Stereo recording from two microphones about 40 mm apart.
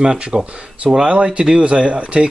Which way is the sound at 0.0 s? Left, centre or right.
Centre.